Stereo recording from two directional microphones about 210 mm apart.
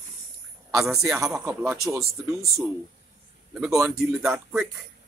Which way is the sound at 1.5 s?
15° right (ahead or behind).